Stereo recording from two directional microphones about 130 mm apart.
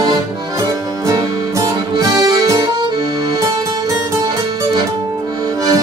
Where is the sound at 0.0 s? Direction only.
30° right (ahead or behind).